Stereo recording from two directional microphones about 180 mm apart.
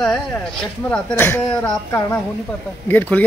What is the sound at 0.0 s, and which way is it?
Speech, 5° left (ahead or behind).